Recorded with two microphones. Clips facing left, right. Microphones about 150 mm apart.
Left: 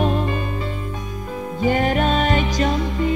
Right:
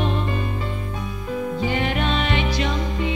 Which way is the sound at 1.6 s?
45° left (ahead or behind).